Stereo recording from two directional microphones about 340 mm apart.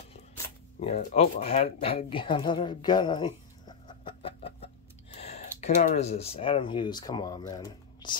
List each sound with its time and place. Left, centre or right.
0.7 s speech: centre